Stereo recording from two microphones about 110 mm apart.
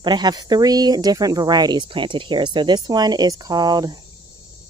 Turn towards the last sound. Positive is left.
turn(degrees=-40)  # may be behind; listen again after turning